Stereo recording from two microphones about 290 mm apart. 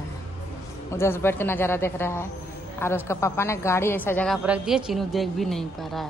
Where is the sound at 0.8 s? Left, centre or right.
Centre.